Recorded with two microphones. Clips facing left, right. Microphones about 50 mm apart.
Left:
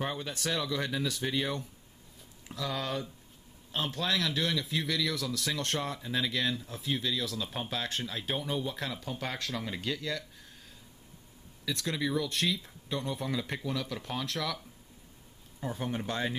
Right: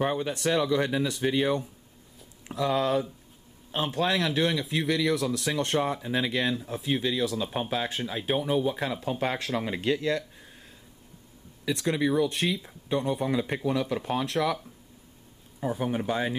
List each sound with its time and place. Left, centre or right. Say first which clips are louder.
0.0 s speech: right 8 dB; right
3.7 s speech: right 5 dB; centre
11.6 s speech: right 7 dB; right